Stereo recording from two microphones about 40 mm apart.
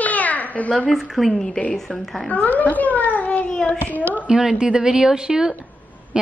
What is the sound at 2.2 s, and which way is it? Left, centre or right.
A child's voice, left.